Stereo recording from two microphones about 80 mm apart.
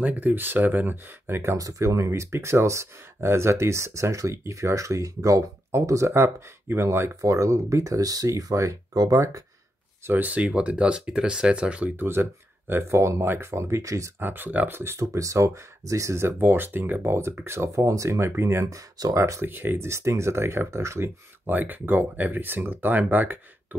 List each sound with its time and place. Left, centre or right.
0.0 s speech: right
10.0 s speech: right
12.0 s speech: right
14.2 s speech: right
19.4 s speech: right
21.5 s speech: right